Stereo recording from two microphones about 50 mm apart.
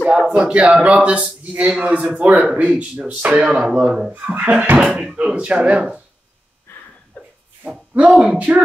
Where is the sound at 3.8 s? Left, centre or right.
Centre.